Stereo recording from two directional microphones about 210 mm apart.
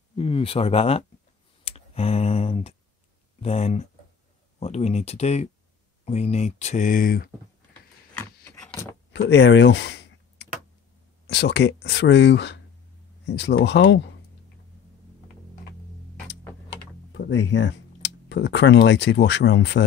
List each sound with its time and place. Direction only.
0.1 s speech: 25° left (ahead or behind)
1.6 s clicking: 30° left (ahead or behind)
3.4 s speech: 30° left (ahead or behind)
8.2 s a sound: 5° left (ahead or behind)
9.1 s a sound: 55° left (ahead or behind)
11.2 s speech: 55° left (ahead or behind)
17.1 s speech: 60° left (ahead or behind)